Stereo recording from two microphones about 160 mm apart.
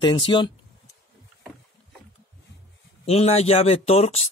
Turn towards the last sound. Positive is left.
turn(degrees=40)  # may be behind; listen again after turning